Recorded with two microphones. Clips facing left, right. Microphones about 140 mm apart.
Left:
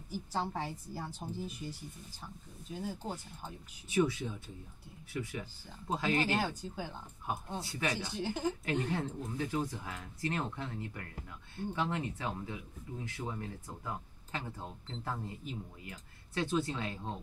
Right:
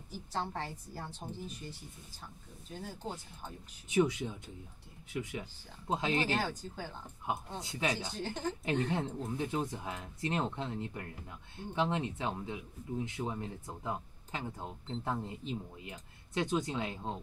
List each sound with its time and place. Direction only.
0.1 s a woman's voice: 10° left (ahead or behind)
2.7 s speech: 5° left (ahead or behind)
3.9 s speech: 20° right (ahead or behind)
6.2 s a woman's voice: 10° left (ahead or behind)
7.6 s speech: 15° right (ahead or behind)
8.1 s a woman's voice: 10° left (ahead or behind)
8.9 s speech: 20° right (ahead or behind)